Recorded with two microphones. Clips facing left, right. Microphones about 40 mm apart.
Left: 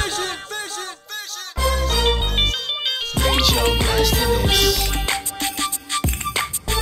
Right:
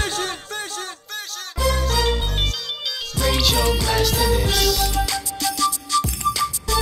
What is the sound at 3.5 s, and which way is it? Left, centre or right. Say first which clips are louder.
Music: left 1 dB; left.